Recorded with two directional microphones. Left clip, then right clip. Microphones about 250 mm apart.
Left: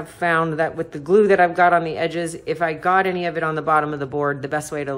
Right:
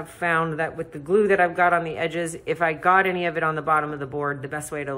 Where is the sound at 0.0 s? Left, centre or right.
Centre.